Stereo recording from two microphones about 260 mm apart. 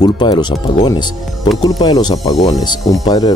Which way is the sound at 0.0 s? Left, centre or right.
Centre.